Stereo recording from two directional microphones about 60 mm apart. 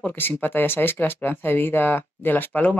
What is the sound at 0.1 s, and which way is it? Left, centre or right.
Speech, left.